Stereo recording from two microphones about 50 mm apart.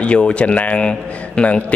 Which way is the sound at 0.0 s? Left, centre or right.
Left.